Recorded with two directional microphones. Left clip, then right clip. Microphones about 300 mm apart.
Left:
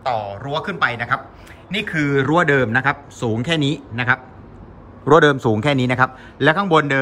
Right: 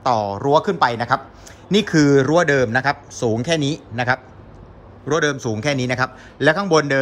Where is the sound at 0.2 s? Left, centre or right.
Centre.